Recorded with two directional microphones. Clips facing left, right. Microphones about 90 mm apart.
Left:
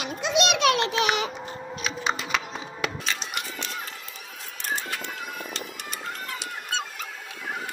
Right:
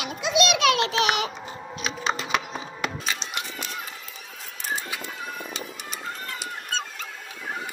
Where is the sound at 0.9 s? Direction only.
15° right (ahead or behind).